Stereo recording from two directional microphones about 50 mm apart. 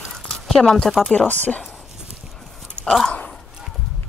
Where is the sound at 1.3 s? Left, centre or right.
Left.